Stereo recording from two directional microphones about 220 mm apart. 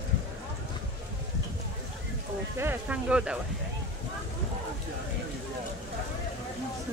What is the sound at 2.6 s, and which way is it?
Speech, 10° right (ahead or behind).